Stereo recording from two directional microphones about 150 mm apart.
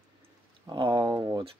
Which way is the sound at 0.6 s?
30° right (ahead or behind).